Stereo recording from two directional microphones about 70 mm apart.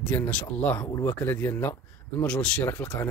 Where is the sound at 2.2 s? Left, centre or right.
Centre.